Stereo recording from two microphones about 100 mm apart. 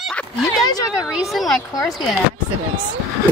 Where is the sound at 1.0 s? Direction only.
5° right (ahead or behind).